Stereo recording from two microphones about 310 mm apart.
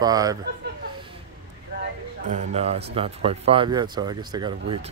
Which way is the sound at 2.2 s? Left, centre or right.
Right.